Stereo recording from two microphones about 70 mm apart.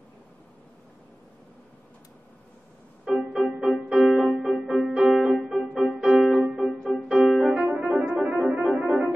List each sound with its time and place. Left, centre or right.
3.3 s music: centre